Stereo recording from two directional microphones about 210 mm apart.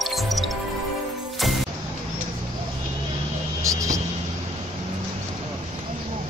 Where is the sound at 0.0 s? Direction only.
Centre (ahead or behind).